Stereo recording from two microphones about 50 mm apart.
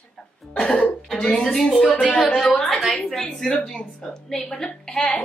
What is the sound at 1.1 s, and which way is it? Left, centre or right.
A woman's voice, centre.